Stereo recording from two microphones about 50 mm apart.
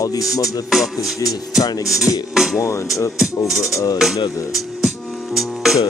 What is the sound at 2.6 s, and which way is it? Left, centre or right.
Speech, left.